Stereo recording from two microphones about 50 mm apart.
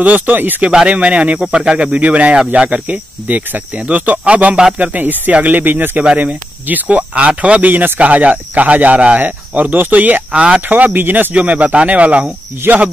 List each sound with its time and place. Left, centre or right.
0.0 s speech: right
0.8 s speech: right
2.3 s speech: centre
2.7 s speech: right
10.7 s speech: right
11.3 s speech: right
12.7 s speech: right